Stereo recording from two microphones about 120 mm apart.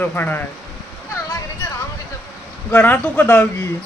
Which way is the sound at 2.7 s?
15° left (ahead or behind).